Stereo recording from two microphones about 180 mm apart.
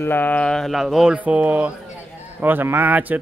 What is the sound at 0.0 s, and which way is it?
Speech, 10° left (ahead or behind).